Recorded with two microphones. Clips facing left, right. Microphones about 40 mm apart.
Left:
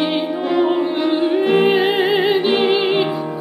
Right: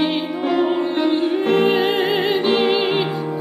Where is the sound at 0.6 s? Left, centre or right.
Centre.